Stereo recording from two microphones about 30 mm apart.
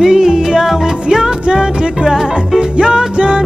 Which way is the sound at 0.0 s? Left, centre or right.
Centre.